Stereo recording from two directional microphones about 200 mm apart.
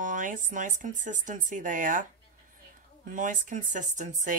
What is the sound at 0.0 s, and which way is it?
Speech, 40° right (ahead or behind).